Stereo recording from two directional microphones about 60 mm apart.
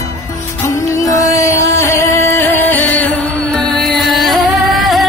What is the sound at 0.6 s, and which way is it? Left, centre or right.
Music, left.